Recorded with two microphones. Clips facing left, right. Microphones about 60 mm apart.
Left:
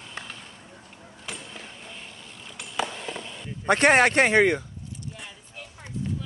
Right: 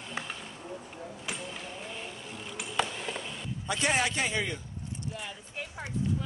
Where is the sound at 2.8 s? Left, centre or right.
Centre.